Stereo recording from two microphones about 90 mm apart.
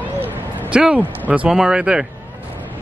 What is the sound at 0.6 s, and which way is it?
Speech, 10° right (ahead or behind).